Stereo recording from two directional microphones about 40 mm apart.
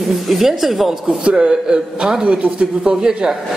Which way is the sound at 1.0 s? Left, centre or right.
Right.